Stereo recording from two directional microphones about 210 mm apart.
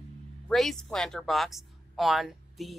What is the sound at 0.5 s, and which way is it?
Speech, centre (ahead or behind).